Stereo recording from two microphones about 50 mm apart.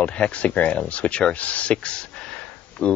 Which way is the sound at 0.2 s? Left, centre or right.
Left.